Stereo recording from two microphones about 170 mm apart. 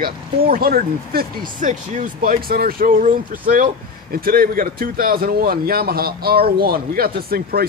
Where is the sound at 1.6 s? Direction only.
50° right (ahead or behind).